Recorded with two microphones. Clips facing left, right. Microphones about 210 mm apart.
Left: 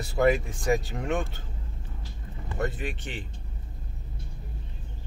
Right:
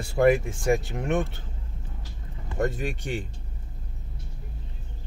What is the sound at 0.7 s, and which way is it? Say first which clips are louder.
Speech: right 2 dB; 20° right (ahead or behind).